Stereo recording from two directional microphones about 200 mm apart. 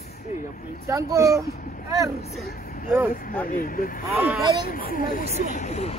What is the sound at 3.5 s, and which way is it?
Speech, 45° left (ahead or behind).